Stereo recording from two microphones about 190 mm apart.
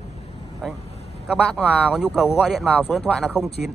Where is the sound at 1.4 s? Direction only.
5° left (ahead or behind).